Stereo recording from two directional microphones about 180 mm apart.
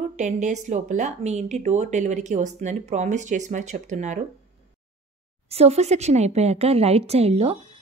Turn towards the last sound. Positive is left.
turn(degrees=-35)  # may be behind; listen again after turning